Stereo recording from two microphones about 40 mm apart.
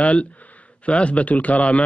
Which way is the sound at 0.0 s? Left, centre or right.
Left.